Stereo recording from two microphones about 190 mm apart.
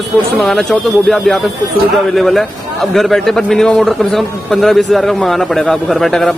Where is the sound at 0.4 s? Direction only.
Centre (ahead or behind).